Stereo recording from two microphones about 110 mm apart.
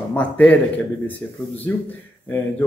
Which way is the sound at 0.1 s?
15° left (ahead or behind).